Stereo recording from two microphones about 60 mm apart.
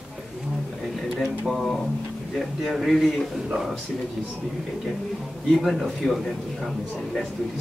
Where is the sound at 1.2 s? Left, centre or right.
Centre.